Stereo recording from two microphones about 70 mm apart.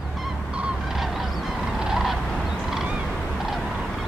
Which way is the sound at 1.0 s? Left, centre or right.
Centre.